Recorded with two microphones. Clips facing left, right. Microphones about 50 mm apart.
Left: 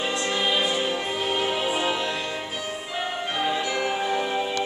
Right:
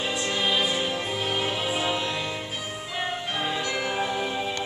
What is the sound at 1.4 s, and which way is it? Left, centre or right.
Music, centre.